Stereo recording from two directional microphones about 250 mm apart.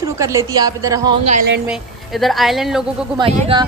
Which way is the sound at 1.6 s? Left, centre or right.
Centre.